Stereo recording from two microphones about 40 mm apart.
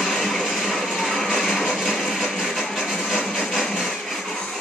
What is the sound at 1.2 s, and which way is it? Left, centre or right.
Music, centre.